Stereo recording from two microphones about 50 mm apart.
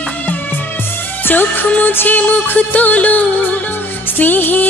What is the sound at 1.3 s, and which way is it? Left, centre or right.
Music, left.